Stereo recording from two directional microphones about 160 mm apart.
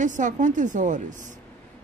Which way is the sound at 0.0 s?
50° right (ahead or behind).